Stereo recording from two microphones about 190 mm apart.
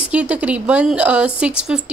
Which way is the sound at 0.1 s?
5° right (ahead or behind).